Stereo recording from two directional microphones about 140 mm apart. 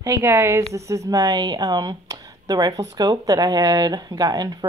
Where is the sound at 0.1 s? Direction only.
15° right (ahead or behind).